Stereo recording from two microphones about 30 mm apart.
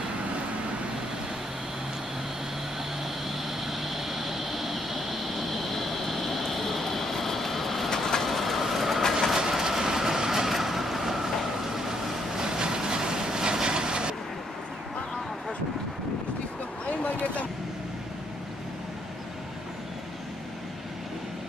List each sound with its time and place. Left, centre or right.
3.4 s vehicle: centre
9.3 s vehicle: centre
17.0 s a sound: left